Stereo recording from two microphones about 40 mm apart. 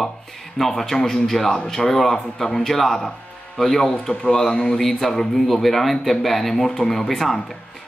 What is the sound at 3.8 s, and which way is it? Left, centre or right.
Speech, left.